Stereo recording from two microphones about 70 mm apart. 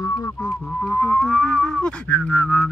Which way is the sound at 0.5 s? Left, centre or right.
Centre.